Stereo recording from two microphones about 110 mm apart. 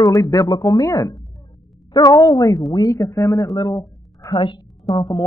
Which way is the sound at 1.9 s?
35° left (ahead or behind).